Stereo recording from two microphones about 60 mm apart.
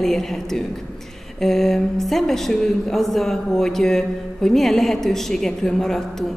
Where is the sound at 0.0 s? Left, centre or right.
Centre.